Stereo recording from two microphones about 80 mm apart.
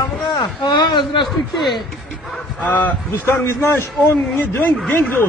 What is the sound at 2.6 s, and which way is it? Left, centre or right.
A man's voice, left.